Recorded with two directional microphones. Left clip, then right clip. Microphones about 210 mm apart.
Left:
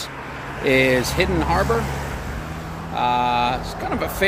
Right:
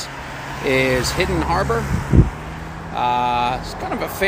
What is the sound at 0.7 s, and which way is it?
Speech, 15° left (ahead or behind).